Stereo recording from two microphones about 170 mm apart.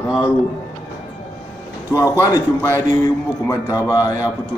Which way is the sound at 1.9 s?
20° left (ahead or behind).